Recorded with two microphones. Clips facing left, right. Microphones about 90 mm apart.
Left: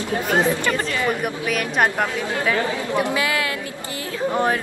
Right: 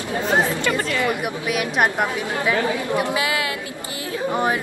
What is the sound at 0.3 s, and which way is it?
Speech, 20° right (ahead or behind).